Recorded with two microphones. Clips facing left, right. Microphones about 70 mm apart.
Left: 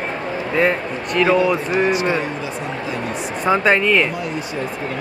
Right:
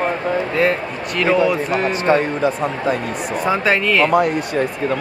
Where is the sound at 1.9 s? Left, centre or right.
Right.